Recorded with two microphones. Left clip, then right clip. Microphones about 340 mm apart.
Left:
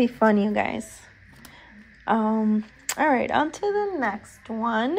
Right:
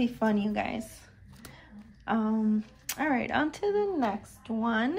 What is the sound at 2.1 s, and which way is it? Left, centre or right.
Speech, centre.